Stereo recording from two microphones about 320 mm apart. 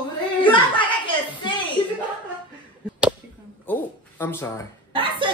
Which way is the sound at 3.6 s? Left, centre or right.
Centre.